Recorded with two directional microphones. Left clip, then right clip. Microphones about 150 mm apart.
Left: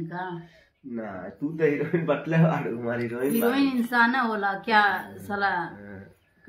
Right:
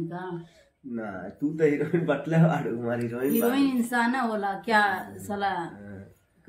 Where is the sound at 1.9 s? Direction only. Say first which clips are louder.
Left 1 dB; centre (ahead or behind).